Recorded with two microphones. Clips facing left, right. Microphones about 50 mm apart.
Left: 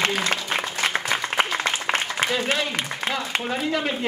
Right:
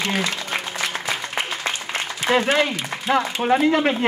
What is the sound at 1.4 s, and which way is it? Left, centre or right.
Applause, left.